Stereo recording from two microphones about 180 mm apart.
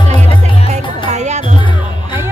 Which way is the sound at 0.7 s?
40° right (ahead or behind).